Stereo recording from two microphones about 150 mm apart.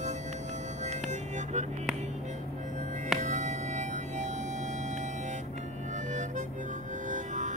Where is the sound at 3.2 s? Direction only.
55° right (ahead or behind).